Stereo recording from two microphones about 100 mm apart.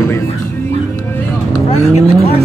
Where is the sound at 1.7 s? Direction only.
80° left.